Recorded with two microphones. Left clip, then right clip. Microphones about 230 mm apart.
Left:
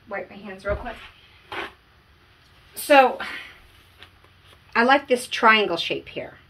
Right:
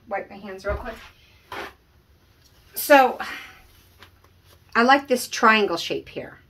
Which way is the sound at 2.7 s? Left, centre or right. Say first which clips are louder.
Even; right.